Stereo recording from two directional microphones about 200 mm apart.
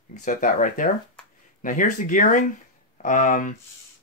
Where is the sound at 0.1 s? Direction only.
40° left (ahead or behind).